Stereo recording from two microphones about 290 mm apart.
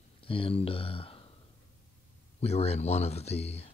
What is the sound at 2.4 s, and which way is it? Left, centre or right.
Speech, left.